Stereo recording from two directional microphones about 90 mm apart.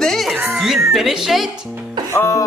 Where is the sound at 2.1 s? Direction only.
30° left (ahead or behind).